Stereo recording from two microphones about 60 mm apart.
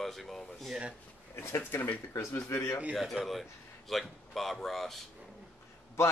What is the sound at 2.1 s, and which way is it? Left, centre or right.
Speech, left.